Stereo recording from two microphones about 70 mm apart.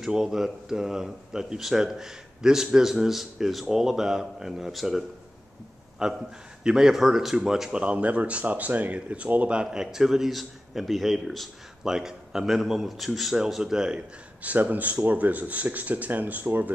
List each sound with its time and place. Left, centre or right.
0.0 s speech: centre
7.8 s speech: centre